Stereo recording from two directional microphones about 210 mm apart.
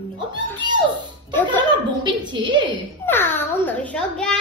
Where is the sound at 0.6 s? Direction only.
20° right (ahead or behind).